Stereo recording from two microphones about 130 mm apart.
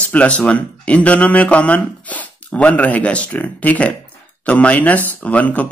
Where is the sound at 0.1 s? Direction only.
10° left (ahead or behind).